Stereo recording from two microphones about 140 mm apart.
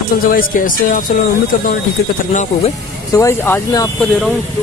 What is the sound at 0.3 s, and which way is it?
Speech, 80° left.